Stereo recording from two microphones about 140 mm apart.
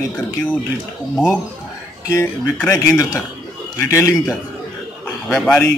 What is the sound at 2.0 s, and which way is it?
A man's voice, 20° left (ahead or behind).